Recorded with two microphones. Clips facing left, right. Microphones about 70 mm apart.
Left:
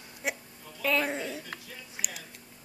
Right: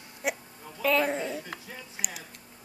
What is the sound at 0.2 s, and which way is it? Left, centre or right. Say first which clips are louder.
Hiccup: right 3 dB; centre.